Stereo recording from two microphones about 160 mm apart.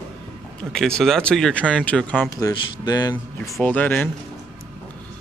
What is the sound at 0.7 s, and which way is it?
Speech, 5° left (ahead or behind).